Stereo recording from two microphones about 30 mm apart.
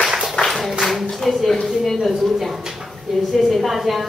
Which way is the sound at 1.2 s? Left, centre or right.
Centre.